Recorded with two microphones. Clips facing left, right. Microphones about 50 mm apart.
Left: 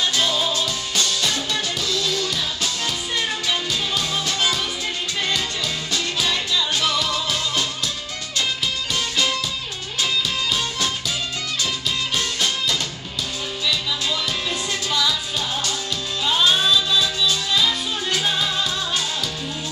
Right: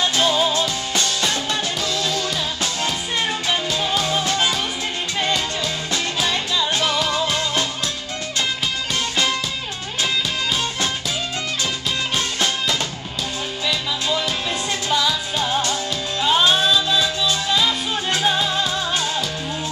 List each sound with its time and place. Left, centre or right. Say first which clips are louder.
0.0 s music: right 3 dB; right
0.5 s music: right 3 dB; right
12.2 s music: right 1 dB; right